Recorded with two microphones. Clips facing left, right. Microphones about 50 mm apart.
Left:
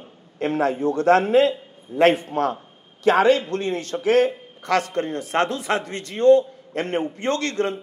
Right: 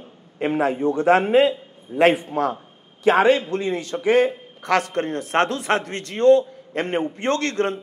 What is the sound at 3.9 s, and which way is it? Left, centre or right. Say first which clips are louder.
Speech: even; right.